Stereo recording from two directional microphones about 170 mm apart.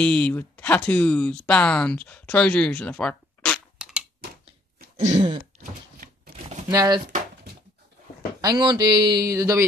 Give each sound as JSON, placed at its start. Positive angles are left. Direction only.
{"t": 0.0, "sound": "speech", "side_deg": 10}
{"t": 3.7, "sound": "a sound", "side_deg": -5}
{"t": 4.9, "sound": "throat clearing", "side_deg": -40}
{"t": 5.6, "sound": "a sound", "side_deg": -55}
{"t": 6.7, "sound": "speech", "side_deg": -20}
{"t": 8.4, "sound": "speech", "side_deg": -25}